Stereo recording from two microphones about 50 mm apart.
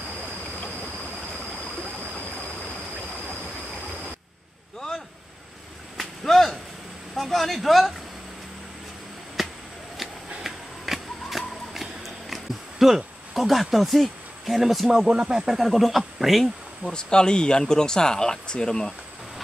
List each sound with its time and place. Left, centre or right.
5.9 s whip: centre
7.2 s speech: centre
9.4 s a sound: centre
15.0 s speech: centre
15.6 s speech: centre
16.8 s speech: centre